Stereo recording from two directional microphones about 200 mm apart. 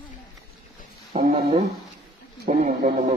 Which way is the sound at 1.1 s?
35° right (ahead or behind).